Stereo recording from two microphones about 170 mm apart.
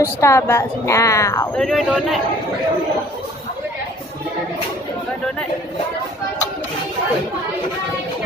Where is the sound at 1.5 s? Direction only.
Centre (ahead or behind).